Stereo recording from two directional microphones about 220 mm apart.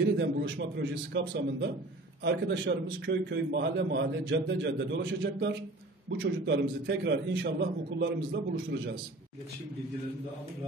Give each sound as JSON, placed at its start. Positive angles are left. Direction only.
{"t": 0.0, "sound": "a man's voice", "side_deg": -50}